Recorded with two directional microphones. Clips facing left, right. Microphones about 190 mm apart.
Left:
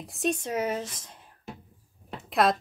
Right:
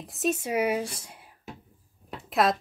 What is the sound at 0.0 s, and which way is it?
Speech, centre (ahead or behind).